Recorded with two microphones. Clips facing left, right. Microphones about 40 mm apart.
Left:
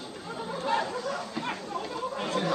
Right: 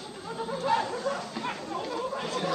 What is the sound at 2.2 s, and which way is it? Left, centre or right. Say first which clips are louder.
Chatter: left 5 dB; left.